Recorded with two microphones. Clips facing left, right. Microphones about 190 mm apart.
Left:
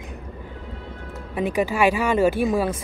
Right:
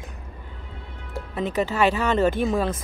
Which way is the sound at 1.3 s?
10° left (ahead or behind).